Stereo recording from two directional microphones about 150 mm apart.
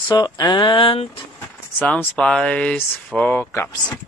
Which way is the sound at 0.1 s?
30° left (ahead or behind).